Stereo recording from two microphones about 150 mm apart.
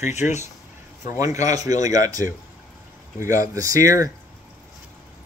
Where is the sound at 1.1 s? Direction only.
20° right (ahead or behind).